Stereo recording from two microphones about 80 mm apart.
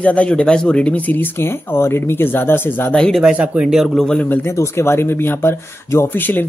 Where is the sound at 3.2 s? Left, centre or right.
Centre.